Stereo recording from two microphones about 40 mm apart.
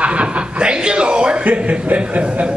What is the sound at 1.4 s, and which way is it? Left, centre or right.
Speech, right.